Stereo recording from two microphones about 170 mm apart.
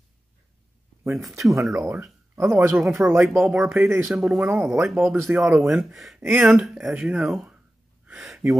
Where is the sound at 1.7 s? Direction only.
Centre (ahead or behind).